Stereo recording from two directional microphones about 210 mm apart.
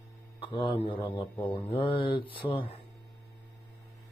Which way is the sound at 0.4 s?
25° left (ahead or behind).